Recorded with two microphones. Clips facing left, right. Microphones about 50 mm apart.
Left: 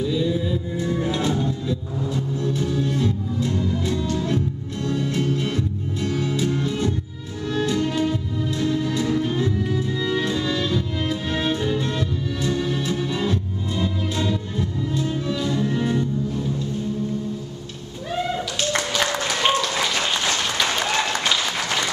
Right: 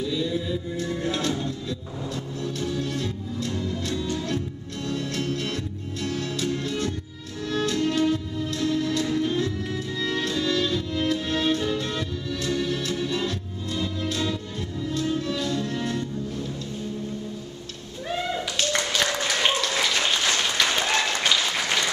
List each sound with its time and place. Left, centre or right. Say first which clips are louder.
0.0 s music: left 4 dB; centre
19.2 s applause: left 3 dB; centre